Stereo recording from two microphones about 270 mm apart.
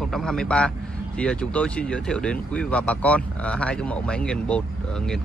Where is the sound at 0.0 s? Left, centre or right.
Centre.